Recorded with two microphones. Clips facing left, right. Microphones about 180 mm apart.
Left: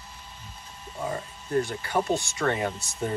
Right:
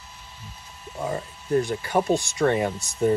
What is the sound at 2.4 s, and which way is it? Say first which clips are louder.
Speech: right 6 dB; 25° right (ahead or behind).